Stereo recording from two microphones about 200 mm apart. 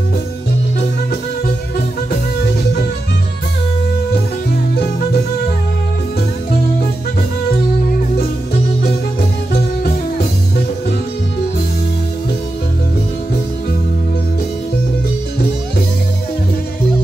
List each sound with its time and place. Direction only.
4.5 s music: 50° left (ahead or behind)
9.5 s music: 50° left (ahead or behind)